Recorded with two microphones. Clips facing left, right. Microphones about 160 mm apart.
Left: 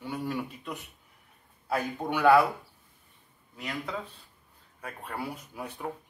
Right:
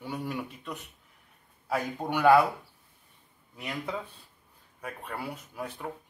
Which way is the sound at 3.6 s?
15° right (ahead or behind).